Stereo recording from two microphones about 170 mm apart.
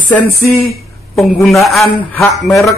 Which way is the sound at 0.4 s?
10° left (ahead or behind).